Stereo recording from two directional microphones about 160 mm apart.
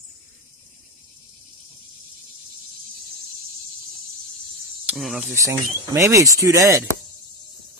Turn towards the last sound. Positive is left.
turn(degrees=-20)  # may be behind; listen again after turning